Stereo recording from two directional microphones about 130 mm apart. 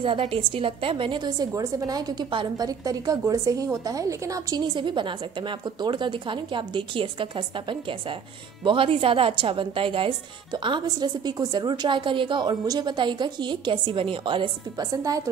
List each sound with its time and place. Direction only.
0.0 s a woman's voice: 45° right (ahead or behind)